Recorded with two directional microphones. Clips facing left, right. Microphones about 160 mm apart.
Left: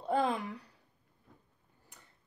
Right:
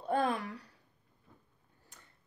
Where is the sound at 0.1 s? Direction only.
15° left (ahead or behind).